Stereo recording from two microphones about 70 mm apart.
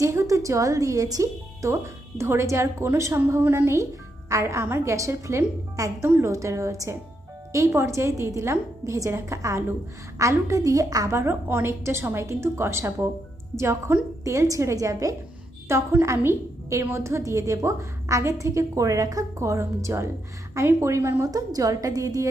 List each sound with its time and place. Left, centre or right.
0.0 s a woman's voice: right
11.1 s a woman's voice: right
15.7 s a woman's voice: right
21.3 s a woman's voice: right